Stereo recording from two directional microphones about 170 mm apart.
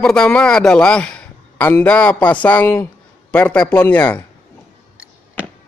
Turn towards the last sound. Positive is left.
turn(degrees=10)  # may be behind; listen again after turning